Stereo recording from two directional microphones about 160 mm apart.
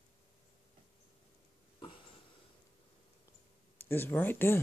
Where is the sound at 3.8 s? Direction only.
15° left (ahead or behind).